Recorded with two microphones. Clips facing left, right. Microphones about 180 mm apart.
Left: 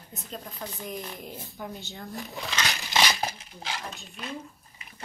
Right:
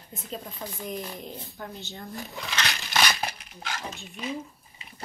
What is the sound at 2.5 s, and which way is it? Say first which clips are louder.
Crumpling: left 1 dB; 20° left (ahead or behind).